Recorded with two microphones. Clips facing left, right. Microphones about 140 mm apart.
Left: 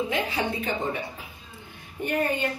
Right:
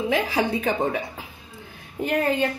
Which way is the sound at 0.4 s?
90° right.